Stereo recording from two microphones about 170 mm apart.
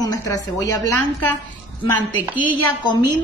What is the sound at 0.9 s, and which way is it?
Speech, 10° left (ahead or behind).